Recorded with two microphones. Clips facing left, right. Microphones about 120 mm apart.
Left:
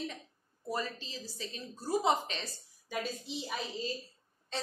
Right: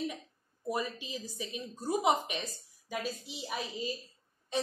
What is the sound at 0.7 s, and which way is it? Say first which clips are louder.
A woman's voice: right 2 dB; 15° right (ahead or behind).